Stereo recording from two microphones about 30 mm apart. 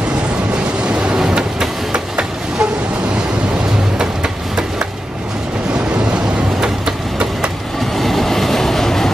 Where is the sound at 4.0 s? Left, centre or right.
Right.